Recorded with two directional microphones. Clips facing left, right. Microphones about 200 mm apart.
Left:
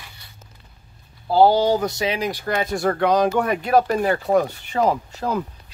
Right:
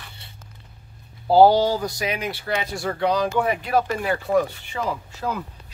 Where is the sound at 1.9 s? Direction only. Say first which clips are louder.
Left 4 dB; 25° left (ahead or behind); by 5.4 s 45° left (ahead or behind).